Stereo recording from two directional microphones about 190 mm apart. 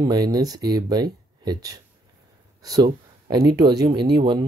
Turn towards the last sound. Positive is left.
turn(degrees=-25)  # may be behind; listen again after turning